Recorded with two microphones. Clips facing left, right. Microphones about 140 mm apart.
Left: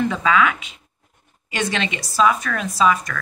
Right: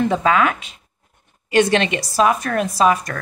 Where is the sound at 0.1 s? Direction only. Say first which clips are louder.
Right 2 dB; 45° right (ahead or behind).